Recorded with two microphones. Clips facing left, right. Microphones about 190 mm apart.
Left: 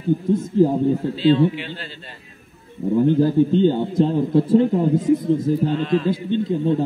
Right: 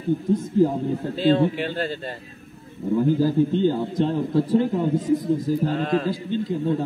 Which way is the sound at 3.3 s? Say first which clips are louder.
Left 3 dB; 25° left (ahead or behind).